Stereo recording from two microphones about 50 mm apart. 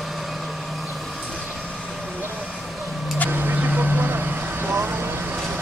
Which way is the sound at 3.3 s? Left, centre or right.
Right.